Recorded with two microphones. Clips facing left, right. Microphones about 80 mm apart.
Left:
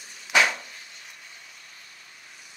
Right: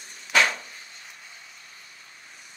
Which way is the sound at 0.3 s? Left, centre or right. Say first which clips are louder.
Even; centre.